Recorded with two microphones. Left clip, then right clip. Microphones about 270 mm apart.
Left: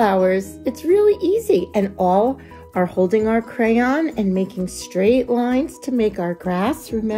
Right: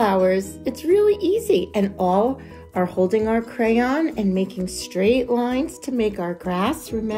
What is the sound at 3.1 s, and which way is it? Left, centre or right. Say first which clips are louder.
Speech: left 2 dB; left.